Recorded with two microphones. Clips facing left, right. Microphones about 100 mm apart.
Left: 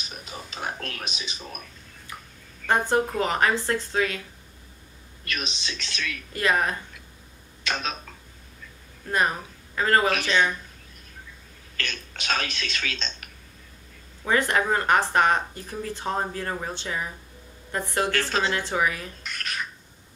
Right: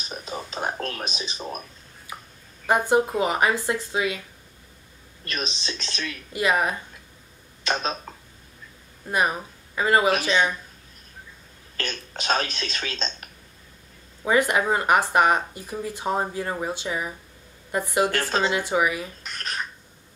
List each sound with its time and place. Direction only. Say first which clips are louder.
0.1 s a sound: right 8 dB; 30° right (ahead or behind)
2.6 s speech: right 2 dB; 10° right (ahead or behind)
5.2 s speech: right 2 dB; 35° right (ahead or behind)
6.3 s speech: right 1 dB; 10° right (ahead or behind)
7.6 s speech: right 4 dB; 35° right (ahead or behind)
9.1 s speech: right 1 dB; 10° right (ahead or behind)
11.7 s speech: right 2 dB; 35° right (ahead or behind)
14.2 s a woman's voice: right 2 dB; 10° right (ahead or behind)
19.2 s a sound: right 1 dB; 35° right (ahead or behind)